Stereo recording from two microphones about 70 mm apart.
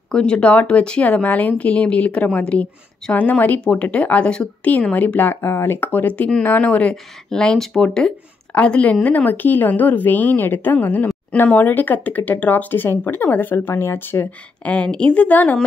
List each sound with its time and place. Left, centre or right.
0.1 s speech: centre; by 14.3 s left
14.6 s speech: centre